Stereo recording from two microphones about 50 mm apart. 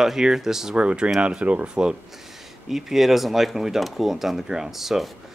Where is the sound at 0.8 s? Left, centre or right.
Right.